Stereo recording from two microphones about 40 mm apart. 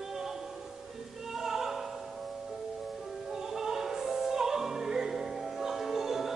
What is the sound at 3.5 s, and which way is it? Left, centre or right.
Opera, centre.